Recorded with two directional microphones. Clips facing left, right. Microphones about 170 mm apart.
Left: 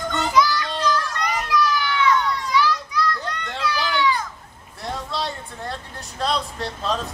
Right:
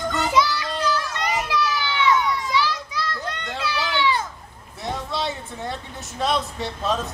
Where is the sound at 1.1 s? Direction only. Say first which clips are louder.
Even; 20° right (ahead or behind).